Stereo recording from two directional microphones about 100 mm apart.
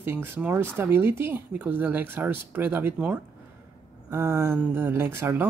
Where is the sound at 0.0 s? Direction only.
20° right (ahead or behind).